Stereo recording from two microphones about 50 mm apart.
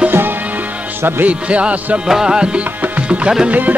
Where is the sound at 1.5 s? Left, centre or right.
Right.